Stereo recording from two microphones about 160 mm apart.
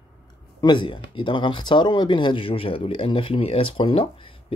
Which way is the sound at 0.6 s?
30° left (ahead or behind).